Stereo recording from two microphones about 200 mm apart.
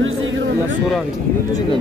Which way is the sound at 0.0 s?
75° right (ahead or behind).